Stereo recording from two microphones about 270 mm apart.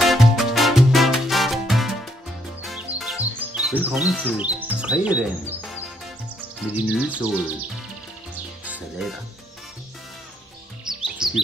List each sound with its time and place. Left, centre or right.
0.0 s music: centre
4.4 s speech: centre
8.6 s music: centre
10.9 s chirp: centre